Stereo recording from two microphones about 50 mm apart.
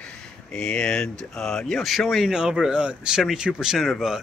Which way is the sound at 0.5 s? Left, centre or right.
Centre.